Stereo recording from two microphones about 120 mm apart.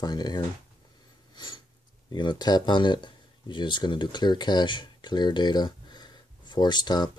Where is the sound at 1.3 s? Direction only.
40° left (ahead or behind).